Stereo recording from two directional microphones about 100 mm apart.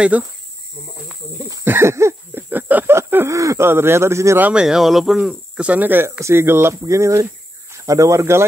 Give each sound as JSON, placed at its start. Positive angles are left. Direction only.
{"t": 0.0, "sound": "speech", "side_deg": -10}
{"t": 1.6, "sound": "a sound", "side_deg": -25}
{"t": 3.3, "sound": "speech", "side_deg": -30}
{"t": 4.4, "sound": "speech", "side_deg": -10}